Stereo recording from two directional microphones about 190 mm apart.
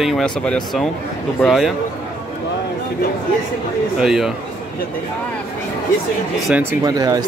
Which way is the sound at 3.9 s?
5° right (ahead or behind).